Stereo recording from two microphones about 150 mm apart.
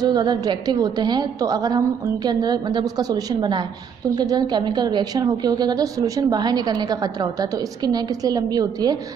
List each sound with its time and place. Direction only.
0.0 s a woman's voice: 25° right (ahead or behind)